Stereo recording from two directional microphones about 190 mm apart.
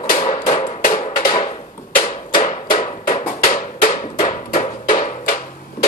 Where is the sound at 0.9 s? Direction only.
25° left (ahead or behind).